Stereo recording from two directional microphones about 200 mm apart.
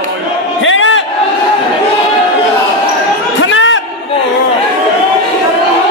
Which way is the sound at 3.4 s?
70° left (ahead or behind).